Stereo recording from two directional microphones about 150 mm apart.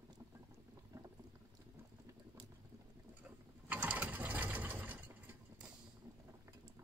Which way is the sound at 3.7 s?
10° right (ahead or behind).